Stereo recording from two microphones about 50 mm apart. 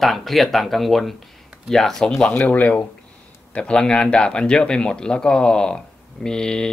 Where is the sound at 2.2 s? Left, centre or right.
Left.